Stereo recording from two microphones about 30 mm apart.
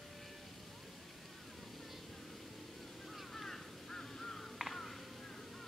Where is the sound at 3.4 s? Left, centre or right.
Centre.